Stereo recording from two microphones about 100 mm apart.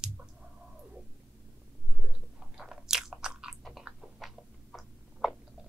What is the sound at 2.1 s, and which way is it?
Biting, 5° right (ahead or behind).